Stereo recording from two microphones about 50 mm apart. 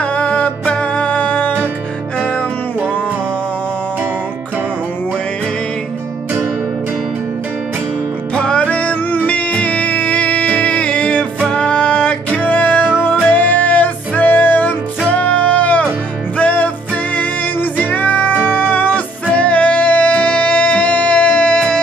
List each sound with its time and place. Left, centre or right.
0.0 s music: left
8.4 s music: left